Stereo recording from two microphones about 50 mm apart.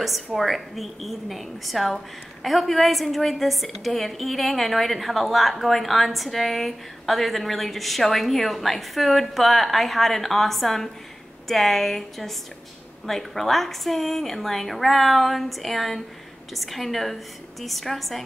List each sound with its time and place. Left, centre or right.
0.4 s a woman's voice: centre